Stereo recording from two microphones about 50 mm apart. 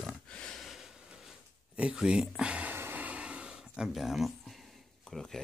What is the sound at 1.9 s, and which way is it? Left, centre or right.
Speech, centre.